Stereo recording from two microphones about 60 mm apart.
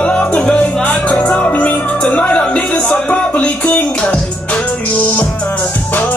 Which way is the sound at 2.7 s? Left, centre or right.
Centre.